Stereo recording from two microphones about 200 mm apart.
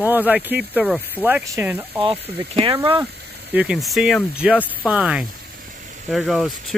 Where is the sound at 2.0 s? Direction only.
25° right (ahead or behind).